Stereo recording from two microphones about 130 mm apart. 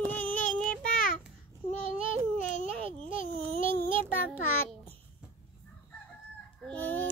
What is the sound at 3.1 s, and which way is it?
Babbling, 45° right (ahead or behind).